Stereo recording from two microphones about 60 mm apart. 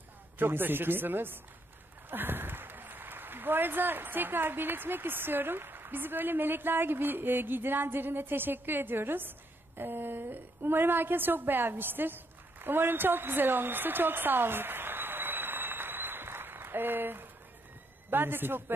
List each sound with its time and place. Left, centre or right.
0.4 s speech: right
12.6 s a sound: right
18.1 s speech: right